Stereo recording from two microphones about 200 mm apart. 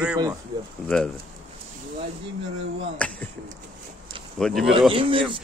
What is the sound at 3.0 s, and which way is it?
Speech, 5° left (ahead or behind).